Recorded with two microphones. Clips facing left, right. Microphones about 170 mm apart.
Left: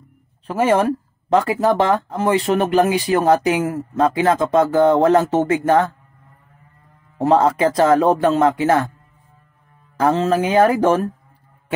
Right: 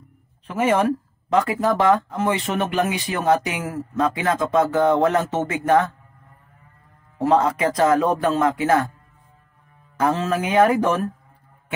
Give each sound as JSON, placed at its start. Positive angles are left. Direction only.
{"t": 0.5, "sound": "speech", "side_deg": 35}
{"t": 7.2, "sound": "speech", "side_deg": 35}
{"t": 9.9, "sound": "speech", "side_deg": 30}